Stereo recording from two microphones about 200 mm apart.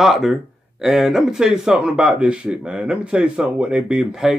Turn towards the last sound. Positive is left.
turn(degrees=-5)  # may be behind; listen again after turning